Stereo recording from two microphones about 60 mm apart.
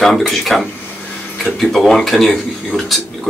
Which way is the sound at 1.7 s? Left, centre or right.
Centre.